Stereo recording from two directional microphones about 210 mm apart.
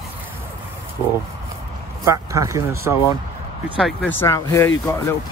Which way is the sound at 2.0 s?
15° right (ahead or behind).